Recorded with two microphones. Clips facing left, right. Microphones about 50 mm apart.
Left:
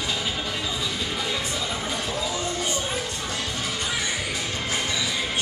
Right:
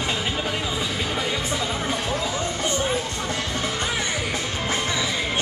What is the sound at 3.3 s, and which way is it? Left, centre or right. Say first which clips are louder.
Music: right 4 dB; right.